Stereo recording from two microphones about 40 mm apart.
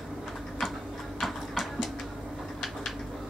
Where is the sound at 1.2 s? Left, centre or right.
Centre.